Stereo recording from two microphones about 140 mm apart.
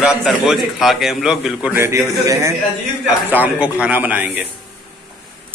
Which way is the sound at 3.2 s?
10° right (ahead or behind).